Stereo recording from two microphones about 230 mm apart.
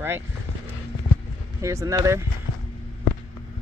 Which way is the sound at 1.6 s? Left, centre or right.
Centre.